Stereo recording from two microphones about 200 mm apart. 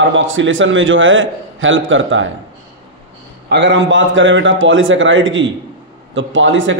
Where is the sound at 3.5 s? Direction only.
65° right (ahead or behind).